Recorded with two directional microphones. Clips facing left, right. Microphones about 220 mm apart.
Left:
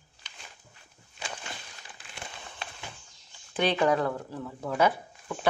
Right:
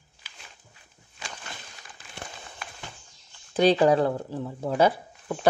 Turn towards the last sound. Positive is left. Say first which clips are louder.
# right 5 dB
turn(degrees=-30)  # may be behind; listen again after turning